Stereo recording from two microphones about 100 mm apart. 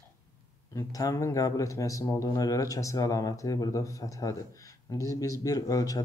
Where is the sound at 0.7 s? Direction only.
35° left (ahead or behind).